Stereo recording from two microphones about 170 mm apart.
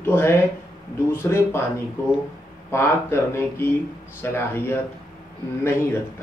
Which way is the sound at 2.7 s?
15° left (ahead or behind).